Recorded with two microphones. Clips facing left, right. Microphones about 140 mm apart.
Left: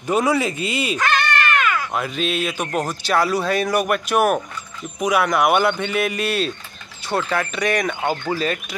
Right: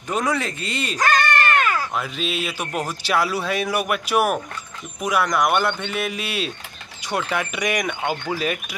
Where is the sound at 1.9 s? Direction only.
Centre (ahead or behind).